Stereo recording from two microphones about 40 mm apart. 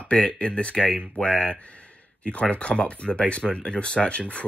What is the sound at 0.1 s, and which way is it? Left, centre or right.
Speech, left.